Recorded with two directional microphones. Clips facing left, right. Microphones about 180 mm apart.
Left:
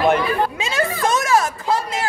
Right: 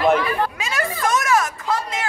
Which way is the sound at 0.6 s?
25° left (ahead or behind).